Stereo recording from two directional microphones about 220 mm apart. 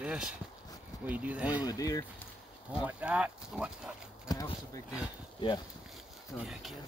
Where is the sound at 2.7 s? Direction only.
5° right (ahead or behind).